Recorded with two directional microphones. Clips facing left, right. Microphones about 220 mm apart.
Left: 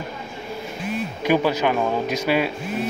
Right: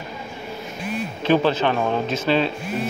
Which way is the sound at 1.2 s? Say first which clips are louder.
Right 1 dB; 10° left (ahead or behind).